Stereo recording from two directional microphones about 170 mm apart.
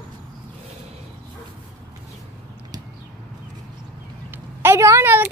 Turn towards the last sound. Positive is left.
turn(degrees=-15)  # may be behind; listen again after turning